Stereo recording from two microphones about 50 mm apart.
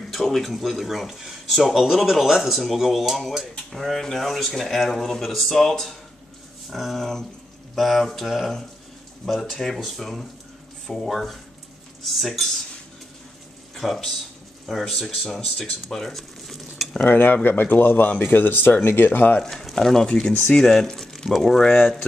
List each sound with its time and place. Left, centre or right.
0.1 s speech: centre
13.7 s a man's voice: centre
17.0 s speech: left
19.4 s speech: centre